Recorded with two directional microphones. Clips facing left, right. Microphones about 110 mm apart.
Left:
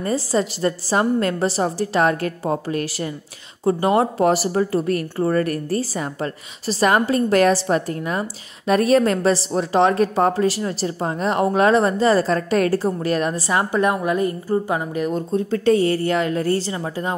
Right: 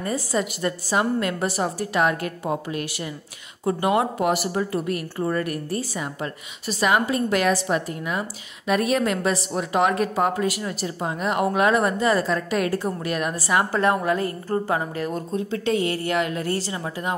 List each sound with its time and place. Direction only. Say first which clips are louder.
0.0 s a woman's voice: left 4 dB; 30° left (ahead or behind)
15.3 s a woman's voice: left 7 dB; 40° left (ahead or behind)